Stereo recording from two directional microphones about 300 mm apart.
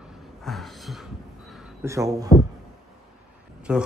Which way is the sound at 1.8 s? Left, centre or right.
Centre.